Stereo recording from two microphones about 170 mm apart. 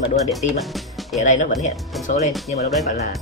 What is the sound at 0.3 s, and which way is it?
Speech, centre (ahead or behind).